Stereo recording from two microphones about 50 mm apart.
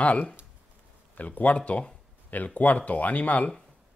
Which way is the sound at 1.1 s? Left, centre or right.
Left.